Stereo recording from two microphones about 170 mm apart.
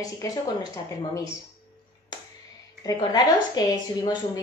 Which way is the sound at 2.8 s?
20° left (ahead or behind).